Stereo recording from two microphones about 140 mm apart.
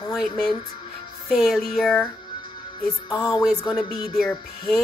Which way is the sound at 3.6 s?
Centre (ahead or behind).